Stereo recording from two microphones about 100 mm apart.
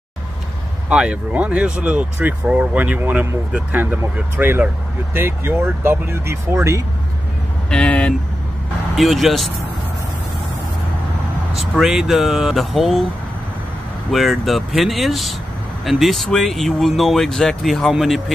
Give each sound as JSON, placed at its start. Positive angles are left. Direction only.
{"t": 0.8, "sound": "speech", "side_deg": -10}
{"t": 7.7, "sound": "vehicle", "side_deg": 10}
{"t": 8.9, "sound": "speech", "side_deg": 0}
{"t": 11.5, "sound": "speech", "side_deg": -5}
{"t": 14.1, "sound": "speech", "side_deg": 0}